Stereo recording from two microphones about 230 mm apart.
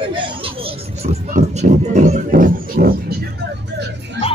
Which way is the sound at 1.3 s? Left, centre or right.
Right.